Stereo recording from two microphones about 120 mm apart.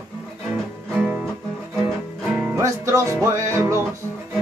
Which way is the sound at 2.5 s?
25° right (ahead or behind).